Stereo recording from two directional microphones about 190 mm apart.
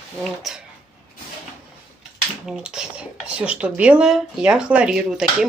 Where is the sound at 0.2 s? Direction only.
Centre (ahead or behind).